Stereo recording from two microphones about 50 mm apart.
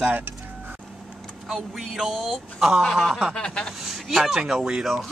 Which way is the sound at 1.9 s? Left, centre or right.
Centre.